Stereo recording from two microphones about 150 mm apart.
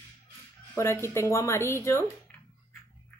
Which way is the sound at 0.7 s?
20° left (ahead or behind).